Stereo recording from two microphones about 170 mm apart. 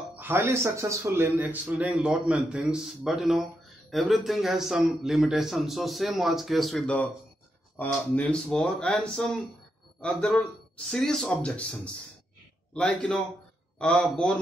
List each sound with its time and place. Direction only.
0.1 s a sound: 10° right (ahead or behind)
0.7 s a man's voice: 15° right (ahead or behind); by 11.6 s 5° left (ahead or behind)
12.7 s a man's voice: 5° left (ahead or behind)